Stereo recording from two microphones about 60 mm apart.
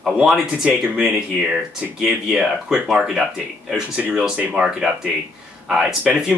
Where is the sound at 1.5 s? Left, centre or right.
Centre.